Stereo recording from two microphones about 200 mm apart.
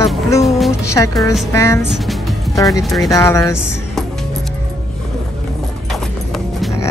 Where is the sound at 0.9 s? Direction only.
15° left (ahead or behind).